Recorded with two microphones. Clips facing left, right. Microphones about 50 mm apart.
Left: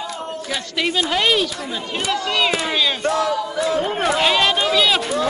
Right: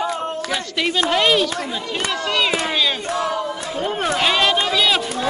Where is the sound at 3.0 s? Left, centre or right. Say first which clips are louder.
Left 3 dB; left.